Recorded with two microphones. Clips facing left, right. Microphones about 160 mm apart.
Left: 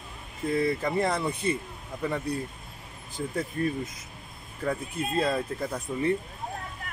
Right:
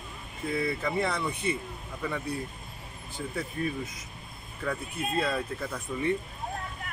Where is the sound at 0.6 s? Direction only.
40° left (ahead or behind).